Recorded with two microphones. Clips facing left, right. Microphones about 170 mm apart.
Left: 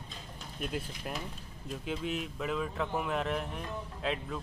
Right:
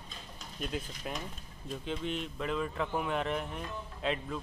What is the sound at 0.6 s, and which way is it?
Speech, 5° left (ahead or behind).